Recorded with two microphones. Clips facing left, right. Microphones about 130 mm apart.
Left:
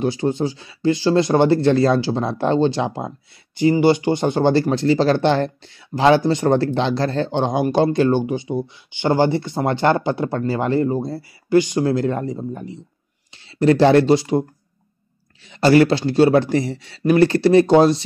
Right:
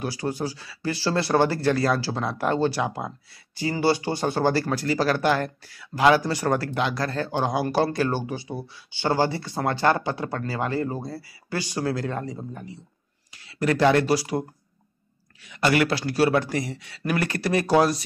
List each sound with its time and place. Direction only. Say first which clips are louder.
0.0 s speech: left 8 dB; 25° left (ahead or behind)
15.4 s speech: left 8 dB; 30° left (ahead or behind)